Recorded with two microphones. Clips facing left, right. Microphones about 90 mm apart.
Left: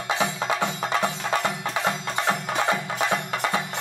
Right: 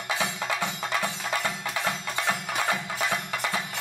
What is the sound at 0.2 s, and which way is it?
Music, 20° left (ahead or behind).